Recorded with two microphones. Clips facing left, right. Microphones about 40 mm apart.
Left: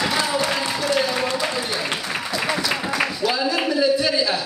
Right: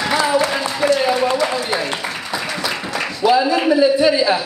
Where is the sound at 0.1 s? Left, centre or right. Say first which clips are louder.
Right 5 dB; centre.